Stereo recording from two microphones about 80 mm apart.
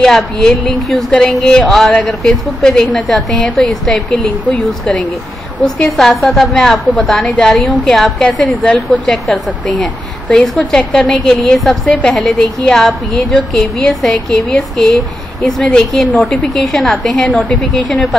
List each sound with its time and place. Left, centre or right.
0.0 s a woman's voice: centre
5.8 s a woman's voice: centre
10.6 s speech: centre
10.9 s a woman's voice: centre